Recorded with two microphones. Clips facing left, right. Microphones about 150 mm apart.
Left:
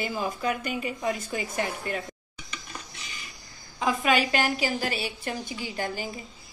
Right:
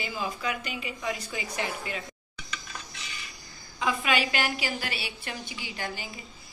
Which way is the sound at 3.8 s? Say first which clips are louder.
Left 3 dB; 40° left (ahead or behind).